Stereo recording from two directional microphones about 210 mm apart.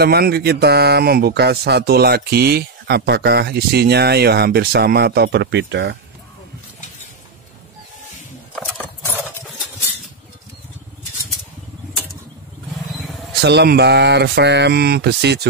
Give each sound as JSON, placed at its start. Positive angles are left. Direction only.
{"t": 0.0, "sound": "speech", "side_deg": -50}
{"t": 13.4, "sound": "speech", "side_deg": -55}